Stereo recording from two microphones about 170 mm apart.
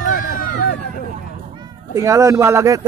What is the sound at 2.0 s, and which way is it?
Speech, 20° right (ahead or behind).